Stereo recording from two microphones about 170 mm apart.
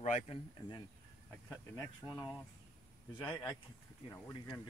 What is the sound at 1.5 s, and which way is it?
Speech, 20° left (ahead or behind).